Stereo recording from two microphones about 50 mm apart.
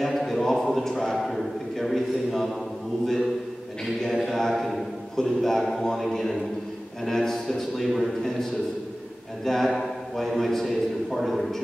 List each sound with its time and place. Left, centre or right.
0.0 s a sound: centre
1.1 s a man's voice: centre
4.0 s a man's voice: centre
9.4 s a man's voice: centre